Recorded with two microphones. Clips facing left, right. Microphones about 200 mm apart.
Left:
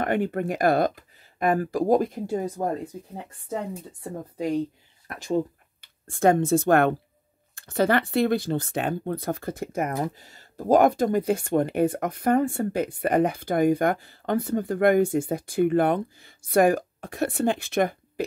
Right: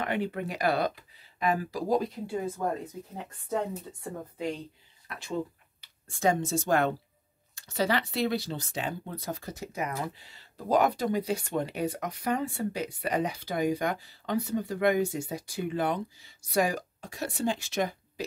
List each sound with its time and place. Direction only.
0.0 s speech: 50° left (ahead or behind)
5.0 s speech: 45° left (ahead or behind)